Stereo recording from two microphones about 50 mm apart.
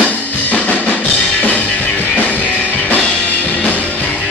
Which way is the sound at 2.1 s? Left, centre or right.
Left.